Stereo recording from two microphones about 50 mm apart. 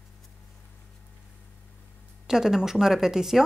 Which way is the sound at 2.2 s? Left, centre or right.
Centre.